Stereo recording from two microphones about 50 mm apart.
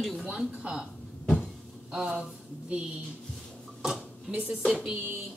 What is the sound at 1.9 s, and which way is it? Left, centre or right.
Speech, centre.